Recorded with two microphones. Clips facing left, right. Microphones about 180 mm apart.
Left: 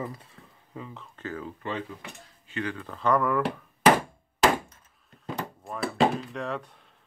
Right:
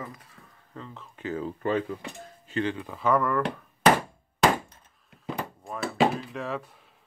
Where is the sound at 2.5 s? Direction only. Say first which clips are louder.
Right 4 dB; 30° right (ahead or behind).